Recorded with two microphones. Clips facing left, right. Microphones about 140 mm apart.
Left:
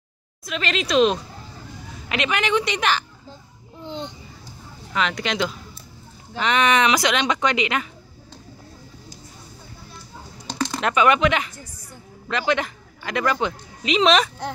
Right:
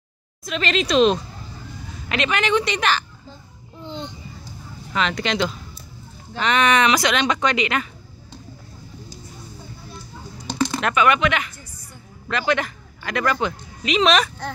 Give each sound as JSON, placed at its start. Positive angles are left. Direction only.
{"t": 0.5, "sound": "speech", "side_deg": 5}
{"t": 4.9, "sound": "speech", "side_deg": 5}
{"t": 10.8, "sound": "a man's voice", "side_deg": 25}